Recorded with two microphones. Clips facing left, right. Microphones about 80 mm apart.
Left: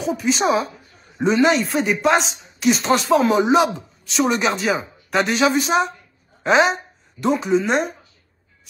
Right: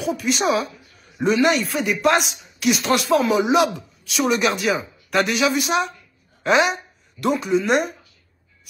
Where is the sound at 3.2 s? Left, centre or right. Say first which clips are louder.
Left 2 dB; left.